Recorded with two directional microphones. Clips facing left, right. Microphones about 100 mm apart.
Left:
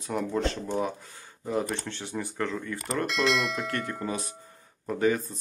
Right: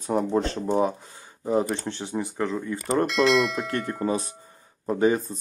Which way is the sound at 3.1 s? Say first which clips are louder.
Right 5 dB; centre (ahead or behind).